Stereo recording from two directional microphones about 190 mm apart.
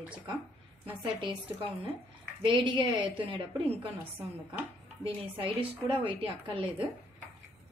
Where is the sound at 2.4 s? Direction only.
25° right (ahead or behind).